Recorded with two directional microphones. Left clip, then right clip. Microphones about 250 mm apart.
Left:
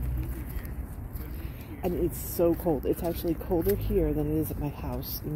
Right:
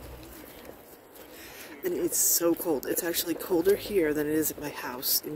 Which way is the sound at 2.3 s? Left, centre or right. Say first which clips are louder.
Left 3 dB; right.